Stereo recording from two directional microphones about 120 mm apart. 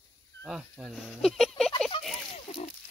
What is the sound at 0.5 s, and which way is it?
Speech, 5° right (ahead or behind).